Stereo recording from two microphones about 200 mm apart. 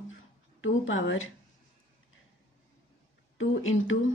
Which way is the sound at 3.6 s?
80° left.